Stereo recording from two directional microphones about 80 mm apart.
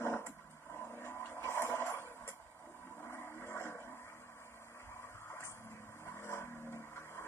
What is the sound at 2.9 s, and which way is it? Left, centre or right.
Vehicle, left.